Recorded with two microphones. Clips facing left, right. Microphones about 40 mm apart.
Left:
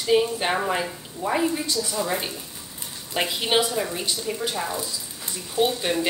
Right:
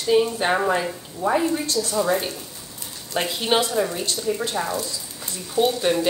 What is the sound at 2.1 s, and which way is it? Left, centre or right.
A woman's voice, centre.